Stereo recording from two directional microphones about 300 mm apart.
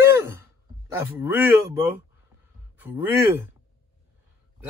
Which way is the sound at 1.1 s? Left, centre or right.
Centre.